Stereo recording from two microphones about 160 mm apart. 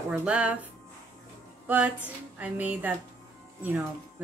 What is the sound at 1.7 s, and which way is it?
Speech, 10° right (ahead or behind).